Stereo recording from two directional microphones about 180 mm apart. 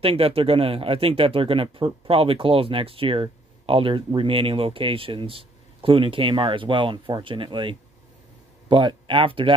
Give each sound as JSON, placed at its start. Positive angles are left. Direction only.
{"t": 0.0, "sound": "speech", "side_deg": -30}